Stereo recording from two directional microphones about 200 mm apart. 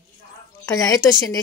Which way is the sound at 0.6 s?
15° left (ahead or behind).